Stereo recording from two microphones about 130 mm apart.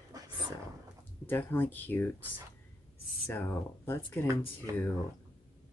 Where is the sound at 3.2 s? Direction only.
20° left (ahead or behind).